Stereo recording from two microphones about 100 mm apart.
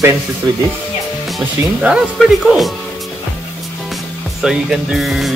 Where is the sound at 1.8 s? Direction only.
5° right (ahead or behind).